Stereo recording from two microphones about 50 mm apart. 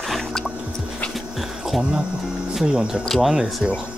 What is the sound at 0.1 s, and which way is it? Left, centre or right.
Music, centre.